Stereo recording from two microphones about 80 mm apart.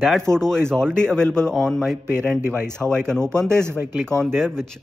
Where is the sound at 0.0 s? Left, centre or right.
Centre.